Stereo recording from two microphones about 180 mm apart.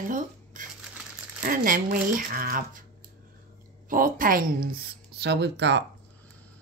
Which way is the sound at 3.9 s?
50° right (ahead or behind).